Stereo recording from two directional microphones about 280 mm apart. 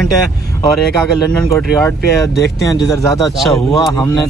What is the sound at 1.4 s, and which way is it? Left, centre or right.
Speech, centre.